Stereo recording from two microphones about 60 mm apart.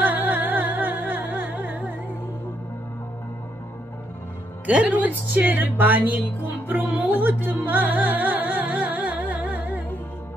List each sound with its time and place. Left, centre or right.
0.0 s music: right
4.6 s speech: right
6.7 s music: right